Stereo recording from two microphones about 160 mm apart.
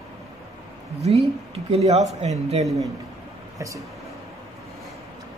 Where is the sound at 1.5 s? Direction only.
40° right (ahead or behind).